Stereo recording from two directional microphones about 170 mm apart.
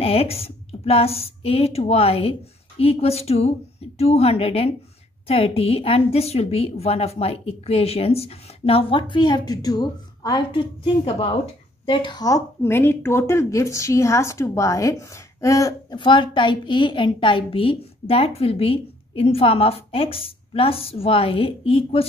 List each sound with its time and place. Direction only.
0.0 s a woman's voice: 35° left (ahead or behind)